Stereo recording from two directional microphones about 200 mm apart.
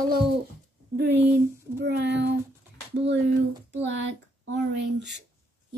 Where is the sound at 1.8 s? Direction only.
55° right (ahead or behind).